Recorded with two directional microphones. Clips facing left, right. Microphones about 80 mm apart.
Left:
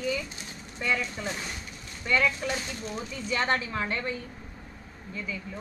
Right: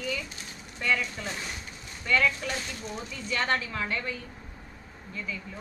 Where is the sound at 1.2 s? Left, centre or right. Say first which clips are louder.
Left 2 dB; centre.